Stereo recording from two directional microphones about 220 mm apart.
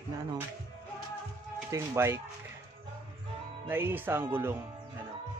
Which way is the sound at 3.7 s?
10° right (ahead or behind).